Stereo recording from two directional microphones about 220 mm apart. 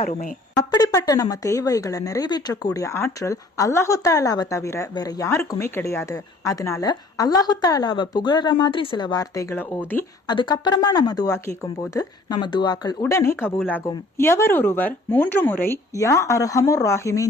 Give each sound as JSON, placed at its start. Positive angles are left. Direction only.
{"t": 0.6, "sound": "speech", "side_deg": 15}
{"t": 10.3, "sound": "speech", "side_deg": 20}